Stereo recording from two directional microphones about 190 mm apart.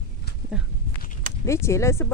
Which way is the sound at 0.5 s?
5° right (ahead or behind).